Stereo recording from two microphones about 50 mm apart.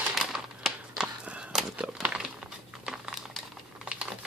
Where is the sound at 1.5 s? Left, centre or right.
Centre.